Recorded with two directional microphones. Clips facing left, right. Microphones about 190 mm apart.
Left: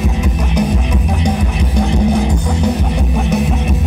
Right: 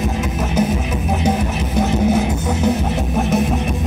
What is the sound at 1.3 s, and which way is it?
Music, 5° right (ahead or behind).